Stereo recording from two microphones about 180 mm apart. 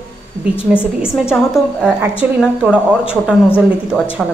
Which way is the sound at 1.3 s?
Centre (ahead or behind).